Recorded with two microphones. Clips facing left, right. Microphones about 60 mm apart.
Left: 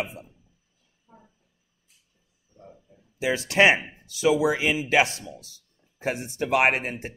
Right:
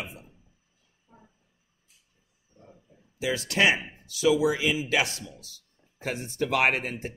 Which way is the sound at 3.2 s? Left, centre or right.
Left.